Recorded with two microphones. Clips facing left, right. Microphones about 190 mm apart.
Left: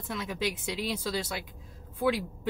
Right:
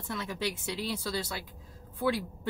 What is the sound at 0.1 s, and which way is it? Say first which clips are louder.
Speech: left 2 dB; 10° left (ahead or behind).